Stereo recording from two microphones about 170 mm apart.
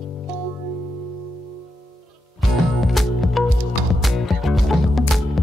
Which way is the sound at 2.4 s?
Centre (ahead or behind).